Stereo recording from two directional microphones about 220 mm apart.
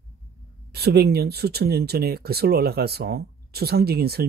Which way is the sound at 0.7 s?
45° right (ahead or behind).